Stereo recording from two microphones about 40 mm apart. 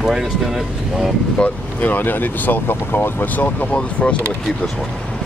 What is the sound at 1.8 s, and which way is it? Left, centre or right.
Speech, left.